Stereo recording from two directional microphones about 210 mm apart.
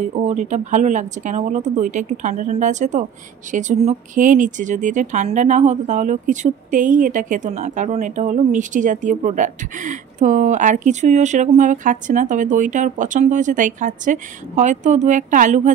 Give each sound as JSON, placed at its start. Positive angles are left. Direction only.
{"t": 0.1, "sound": "speech", "side_deg": -35}